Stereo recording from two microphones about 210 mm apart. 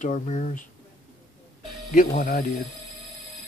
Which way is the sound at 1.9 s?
40° left (ahead or behind).